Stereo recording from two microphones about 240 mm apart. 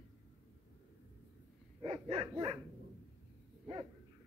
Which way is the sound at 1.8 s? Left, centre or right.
Right.